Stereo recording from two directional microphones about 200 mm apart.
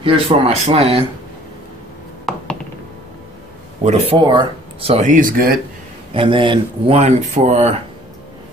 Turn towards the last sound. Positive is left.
turn(degrees=-35)  # may be behind; listen again after turning